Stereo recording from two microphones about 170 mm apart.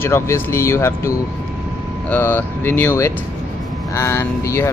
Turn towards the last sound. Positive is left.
turn(degrees=15)  # may be behind; listen again after turning